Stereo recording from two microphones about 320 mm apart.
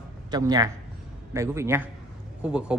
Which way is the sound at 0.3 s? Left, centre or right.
Centre.